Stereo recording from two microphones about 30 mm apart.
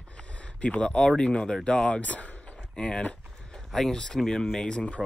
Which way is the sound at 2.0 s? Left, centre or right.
Left.